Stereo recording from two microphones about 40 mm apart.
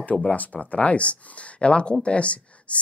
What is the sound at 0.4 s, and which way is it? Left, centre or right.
A woman's voice, left.